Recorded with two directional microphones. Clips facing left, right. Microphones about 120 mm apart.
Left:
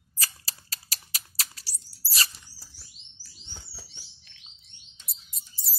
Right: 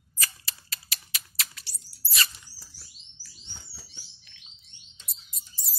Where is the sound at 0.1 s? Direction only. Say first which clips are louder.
Right 1 dB; 35° left (ahead or behind).